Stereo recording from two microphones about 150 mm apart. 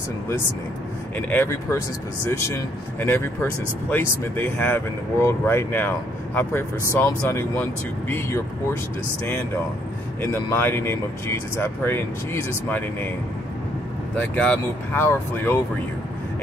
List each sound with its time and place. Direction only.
1.1 s speech: 15° left (ahead or behind)
10.3 s speech: 15° left (ahead or behind)
14.1 s speech: 10° left (ahead or behind)